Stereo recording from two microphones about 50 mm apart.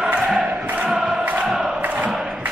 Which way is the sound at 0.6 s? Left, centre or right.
Right.